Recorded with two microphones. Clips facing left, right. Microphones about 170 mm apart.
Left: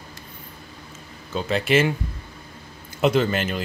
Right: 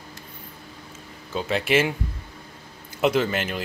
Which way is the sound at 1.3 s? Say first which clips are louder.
Left 2 dB; 5° right (ahead or behind).